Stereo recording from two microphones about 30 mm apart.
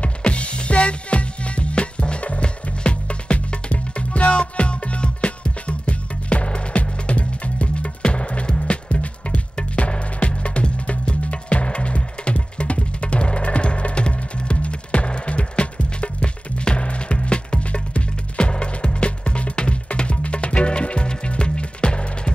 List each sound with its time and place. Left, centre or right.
0.2 s music: left